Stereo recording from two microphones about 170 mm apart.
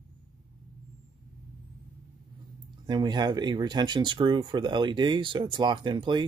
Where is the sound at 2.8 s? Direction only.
25° right (ahead or behind).